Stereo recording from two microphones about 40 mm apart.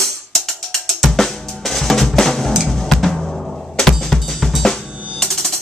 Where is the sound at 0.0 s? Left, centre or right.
Centre.